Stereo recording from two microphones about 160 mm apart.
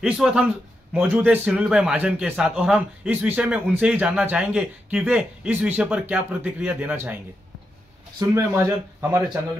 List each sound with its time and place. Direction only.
0.0 s a man's voice: 5° right (ahead or behind)
8.2 s a man's voice: 15° right (ahead or behind)